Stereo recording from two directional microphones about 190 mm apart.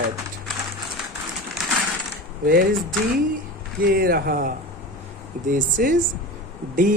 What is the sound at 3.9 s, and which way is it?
Speech, 50° right (ahead or behind).